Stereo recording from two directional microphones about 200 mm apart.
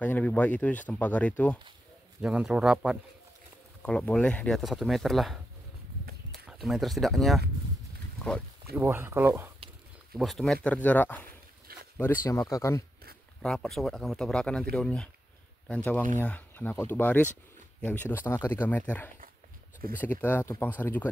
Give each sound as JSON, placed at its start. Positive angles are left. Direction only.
{"t": 0.0, "sound": "speech", "side_deg": 5}
{"t": 2.2, "sound": "speech", "side_deg": -5}
{"t": 8.7, "sound": "speech", "side_deg": -10}
{"t": 10.1, "sound": "speech", "side_deg": 0}
{"t": 11.7, "sound": "a sound", "side_deg": -50}
{"t": 12.3, "sound": "speech", "side_deg": 15}
{"t": 13.4, "sound": "speech", "side_deg": 5}